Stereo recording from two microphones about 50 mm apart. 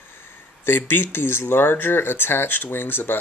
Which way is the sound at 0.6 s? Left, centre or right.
Left.